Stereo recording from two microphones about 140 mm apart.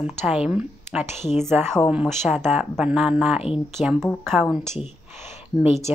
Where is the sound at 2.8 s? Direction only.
5° right (ahead or behind).